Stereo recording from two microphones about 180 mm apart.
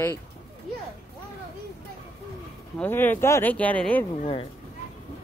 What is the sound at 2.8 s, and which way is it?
Speech, 10° left (ahead or behind).